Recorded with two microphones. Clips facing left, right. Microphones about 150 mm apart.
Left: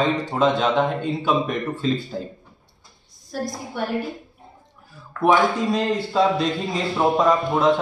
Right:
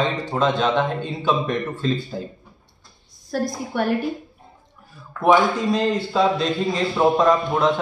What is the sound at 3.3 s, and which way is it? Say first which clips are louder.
Speech: right 5 dB; 65° right (ahead or behind).